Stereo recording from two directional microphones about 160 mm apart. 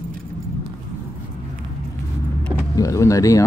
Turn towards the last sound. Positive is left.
turn(degrees=20)  # may be behind; listen again after turning